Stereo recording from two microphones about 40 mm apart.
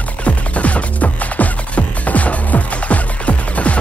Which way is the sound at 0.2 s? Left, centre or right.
Left.